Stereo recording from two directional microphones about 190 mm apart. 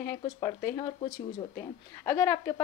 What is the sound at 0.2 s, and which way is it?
Speech, 20° left (ahead or behind).